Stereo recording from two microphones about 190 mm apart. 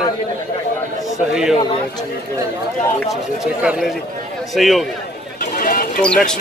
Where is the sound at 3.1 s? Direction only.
5° right (ahead or behind).